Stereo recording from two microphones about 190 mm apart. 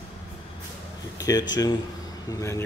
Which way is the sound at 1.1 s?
20° left (ahead or behind).